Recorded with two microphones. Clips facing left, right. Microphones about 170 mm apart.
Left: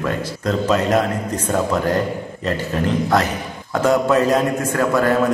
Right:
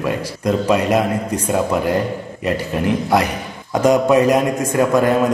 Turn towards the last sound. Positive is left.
turn(degrees=-15)  # may be behind; listen again after turning